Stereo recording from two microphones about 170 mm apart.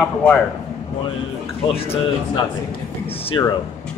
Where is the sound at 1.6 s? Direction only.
35° left (ahead or behind).